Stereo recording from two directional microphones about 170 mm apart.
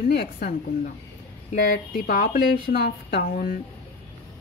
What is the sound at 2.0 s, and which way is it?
A woman's voice, 55° left (ahead or behind).